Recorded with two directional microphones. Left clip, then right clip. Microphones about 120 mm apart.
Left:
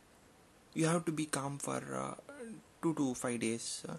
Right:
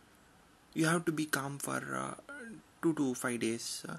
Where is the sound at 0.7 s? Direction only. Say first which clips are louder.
Right 2 dB; 20° left (ahead or behind).